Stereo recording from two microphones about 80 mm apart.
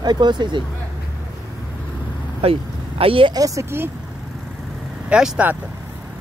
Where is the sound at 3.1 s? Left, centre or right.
Right.